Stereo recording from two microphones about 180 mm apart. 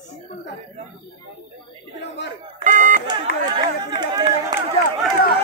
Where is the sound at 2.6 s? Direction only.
45° right (ahead or behind).